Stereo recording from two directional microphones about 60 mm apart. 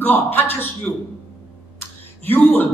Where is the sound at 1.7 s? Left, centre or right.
Left.